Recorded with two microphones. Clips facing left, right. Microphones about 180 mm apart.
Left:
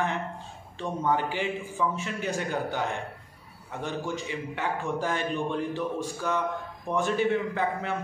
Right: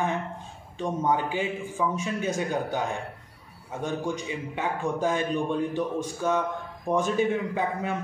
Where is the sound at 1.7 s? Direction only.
20° right (ahead or behind).